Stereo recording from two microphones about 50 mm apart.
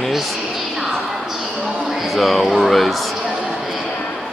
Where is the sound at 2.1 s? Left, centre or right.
Centre.